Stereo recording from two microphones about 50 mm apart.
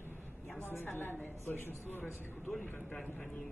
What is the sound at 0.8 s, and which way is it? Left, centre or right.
A woman's voice, left.